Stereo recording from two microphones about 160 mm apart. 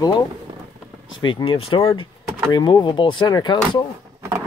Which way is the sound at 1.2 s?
30° left (ahead or behind).